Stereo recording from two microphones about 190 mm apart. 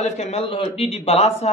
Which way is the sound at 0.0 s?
35° left (ahead or behind).